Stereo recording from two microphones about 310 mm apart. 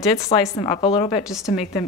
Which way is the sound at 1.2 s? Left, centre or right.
Centre.